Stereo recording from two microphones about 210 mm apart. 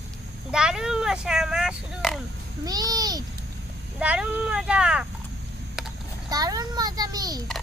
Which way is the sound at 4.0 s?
5° right (ahead or behind).